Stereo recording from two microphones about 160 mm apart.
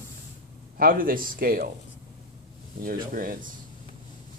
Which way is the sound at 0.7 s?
60° right (ahead or behind).